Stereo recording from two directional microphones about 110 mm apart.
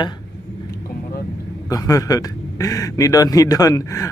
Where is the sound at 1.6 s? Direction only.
30° left (ahead or behind).